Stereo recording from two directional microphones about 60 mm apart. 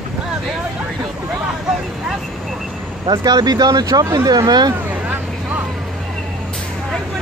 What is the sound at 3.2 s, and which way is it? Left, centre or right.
Speech, right.